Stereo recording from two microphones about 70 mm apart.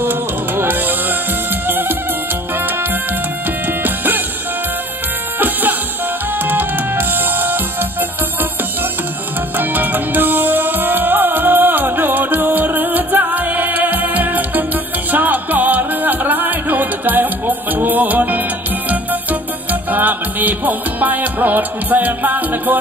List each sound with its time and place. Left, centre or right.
0.0 s music: right
3.6 s music: right
5.4 s music: right
9.6 s music: right
19.7 s music: right